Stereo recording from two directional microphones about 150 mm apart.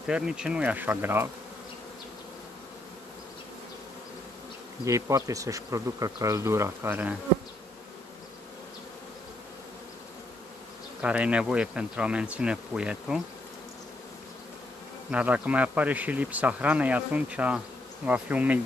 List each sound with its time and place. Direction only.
0.0 s speech: 5° right (ahead or behind)
4.8 s speech: 20° right (ahead or behind)
11.0 s speech: 10° right (ahead or behind)
15.0 s speech: 10° right (ahead or behind)